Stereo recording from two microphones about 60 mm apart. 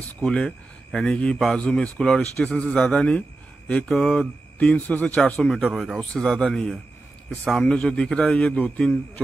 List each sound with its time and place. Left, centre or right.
0.2 s speech: centre
4.0 s speech: centre
4.6 s a man's voice: left
5.4 s speech: centre
7.6 s speech: centre